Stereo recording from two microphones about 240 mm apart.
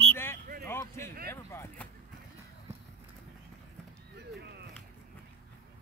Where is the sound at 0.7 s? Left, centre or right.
Centre.